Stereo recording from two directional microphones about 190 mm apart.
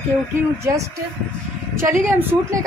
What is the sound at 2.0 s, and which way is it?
Speech, 15° right (ahead or behind).